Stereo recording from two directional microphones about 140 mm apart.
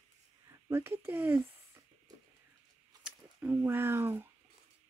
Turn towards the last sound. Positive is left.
turn(degrees=-15)  # may be behind; listen again after turning